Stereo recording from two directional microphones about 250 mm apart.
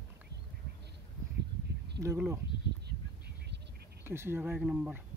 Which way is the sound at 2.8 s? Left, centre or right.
Right.